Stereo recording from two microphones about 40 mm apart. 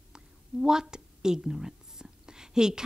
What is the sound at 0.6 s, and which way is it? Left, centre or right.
Whispering, centre.